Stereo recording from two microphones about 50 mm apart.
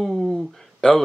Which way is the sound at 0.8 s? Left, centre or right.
Centre.